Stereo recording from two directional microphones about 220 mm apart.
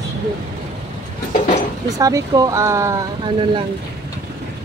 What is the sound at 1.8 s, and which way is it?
Speech, 15° right (ahead or behind).